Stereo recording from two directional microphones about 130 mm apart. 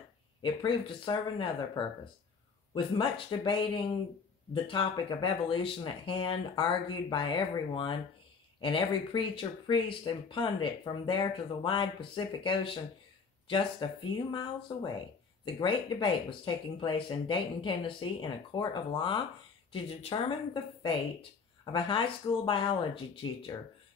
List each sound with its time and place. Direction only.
0.4 s speech: 40° left (ahead or behind)
19.7 s speech: 50° left (ahead or behind)